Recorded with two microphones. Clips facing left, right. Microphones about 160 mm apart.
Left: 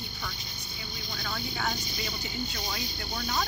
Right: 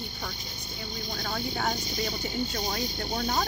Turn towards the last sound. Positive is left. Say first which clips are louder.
# right 4 dB
turn(degrees=-40)  # may be behind; listen again after turning